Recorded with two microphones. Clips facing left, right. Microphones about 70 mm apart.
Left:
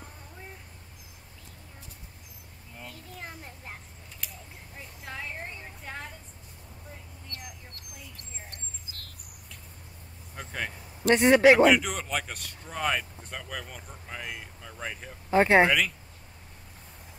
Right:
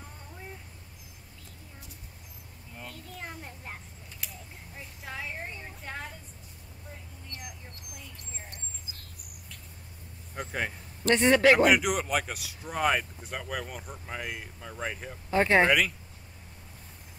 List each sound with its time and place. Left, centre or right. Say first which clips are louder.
2.8 s a sound: right 1 dB; centre
7.3 s mouse: right 1 dB; right
8.5 s a sound: even; centre
10.3 s vehicle: right 2 dB; centre
11.1 s a man's voice: left 3 dB; centre
11.6 s speech: left 1 dB; centre
15.3 s a man's voice: left 3 dB; centre